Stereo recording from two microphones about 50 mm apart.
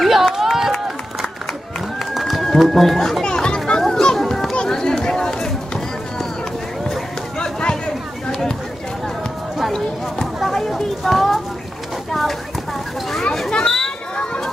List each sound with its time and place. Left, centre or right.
0.0 s run: centre
2.1 s run: centre
2.6 s speech: centre
3.3 s children playing: centre
4.6 s chatter: centre
7.3 s a sound: centre
9.7 s a sound: centre
12.1 s clip-clop: centre
13.5 s a sound: centre